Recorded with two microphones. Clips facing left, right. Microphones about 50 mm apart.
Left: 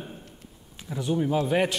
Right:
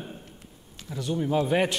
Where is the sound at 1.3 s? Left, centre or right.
Centre.